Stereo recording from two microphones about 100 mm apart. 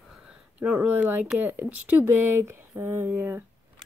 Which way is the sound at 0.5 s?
15° right (ahead or behind).